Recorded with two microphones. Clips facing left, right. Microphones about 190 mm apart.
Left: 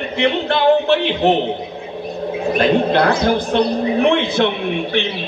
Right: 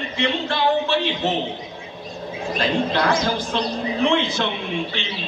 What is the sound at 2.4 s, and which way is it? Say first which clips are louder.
Speech: left 7 dB; 60° left (ahead or behind).